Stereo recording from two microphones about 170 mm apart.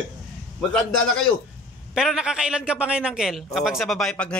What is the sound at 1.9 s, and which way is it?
A man's voice, 5° right (ahead or behind).